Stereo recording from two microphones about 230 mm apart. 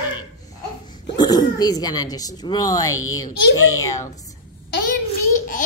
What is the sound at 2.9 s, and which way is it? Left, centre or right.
Speech, left.